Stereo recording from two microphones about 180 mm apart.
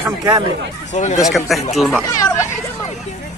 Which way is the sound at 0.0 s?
20° right (ahead or behind).